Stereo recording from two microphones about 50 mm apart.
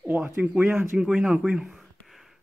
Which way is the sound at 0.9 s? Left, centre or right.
Centre.